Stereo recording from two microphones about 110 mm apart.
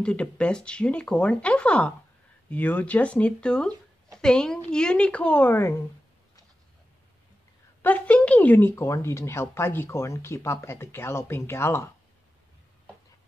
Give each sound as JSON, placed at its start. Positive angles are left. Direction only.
{"t": 0.0, "sound": "speech", "side_deg": 10}
{"t": 7.8, "sound": "speech", "side_deg": 15}